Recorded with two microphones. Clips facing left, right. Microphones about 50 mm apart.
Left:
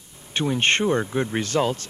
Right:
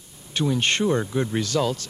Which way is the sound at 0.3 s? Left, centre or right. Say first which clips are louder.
Left 2 dB; left.